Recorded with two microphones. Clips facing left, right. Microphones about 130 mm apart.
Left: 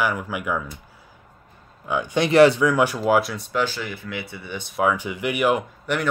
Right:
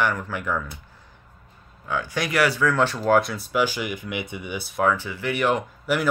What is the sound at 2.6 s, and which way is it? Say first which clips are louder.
Speech: left 2 dB; 15° left (ahead or behind).